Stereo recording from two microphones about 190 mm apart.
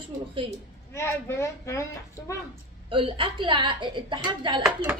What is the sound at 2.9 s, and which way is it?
A woman's voice, 25° right (ahead or behind).